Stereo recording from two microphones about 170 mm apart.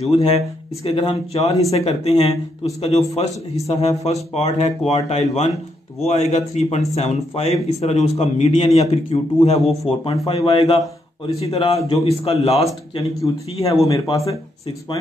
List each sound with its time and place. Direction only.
0.0 s a man's voice: 35° left (ahead or behind)
12.9 s speech: 20° left (ahead or behind)